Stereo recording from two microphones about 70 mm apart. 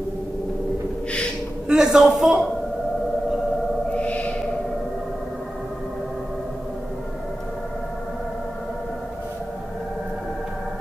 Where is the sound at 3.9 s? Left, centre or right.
Centre.